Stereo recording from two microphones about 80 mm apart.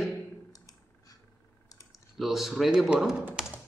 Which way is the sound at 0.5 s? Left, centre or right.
Left.